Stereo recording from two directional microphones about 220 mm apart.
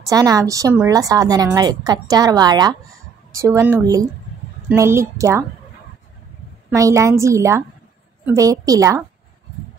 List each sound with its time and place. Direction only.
0.0 s a woman's voice: 15° right (ahead or behind)
6.7 s a woman's voice: 15° right (ahead or behind)